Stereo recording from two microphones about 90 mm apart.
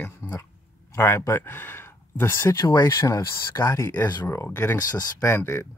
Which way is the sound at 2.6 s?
50° left (ahead or behind).